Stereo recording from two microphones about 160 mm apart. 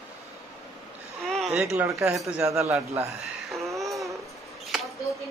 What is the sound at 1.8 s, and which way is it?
Speech, 15° right (ahead or behind).